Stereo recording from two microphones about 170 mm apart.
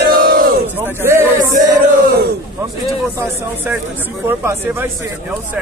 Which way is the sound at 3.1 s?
10° right (ahead or behind).